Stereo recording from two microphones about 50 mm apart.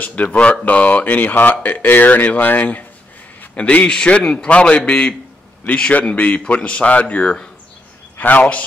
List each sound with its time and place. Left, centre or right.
0.0 s speech: left